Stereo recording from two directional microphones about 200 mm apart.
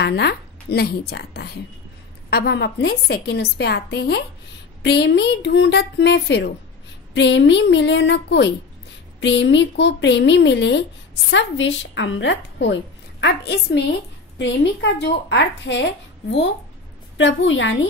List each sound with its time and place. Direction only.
0.0 s a woman's voice: 55° left (ahead or behind)